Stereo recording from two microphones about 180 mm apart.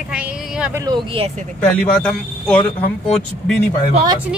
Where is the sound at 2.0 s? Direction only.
5° left (ahead or behind).